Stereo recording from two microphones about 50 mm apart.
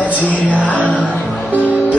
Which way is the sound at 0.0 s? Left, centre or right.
Left.